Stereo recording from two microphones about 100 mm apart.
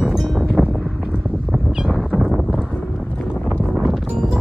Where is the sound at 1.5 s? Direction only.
5° right (ahead or behind).